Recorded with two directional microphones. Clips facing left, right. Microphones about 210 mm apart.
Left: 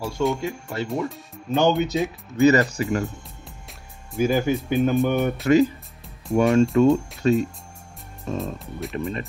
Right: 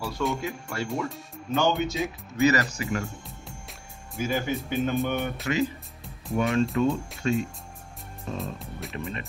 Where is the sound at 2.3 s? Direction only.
30° left (ahead or behind).